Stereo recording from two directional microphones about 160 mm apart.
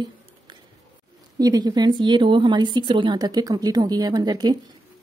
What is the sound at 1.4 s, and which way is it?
A woman's voice, 25° right (ahead or behind).